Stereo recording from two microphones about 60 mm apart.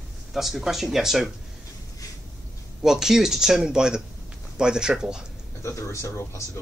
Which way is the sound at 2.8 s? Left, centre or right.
Centre.